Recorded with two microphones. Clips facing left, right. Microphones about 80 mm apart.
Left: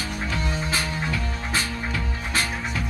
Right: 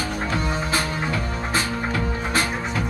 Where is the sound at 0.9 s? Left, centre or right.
Right.